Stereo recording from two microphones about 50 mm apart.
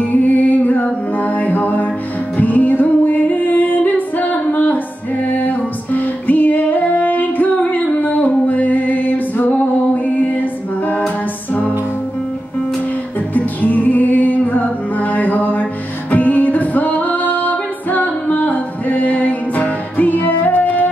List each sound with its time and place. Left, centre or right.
0.0 s music: left
13.3 s music: left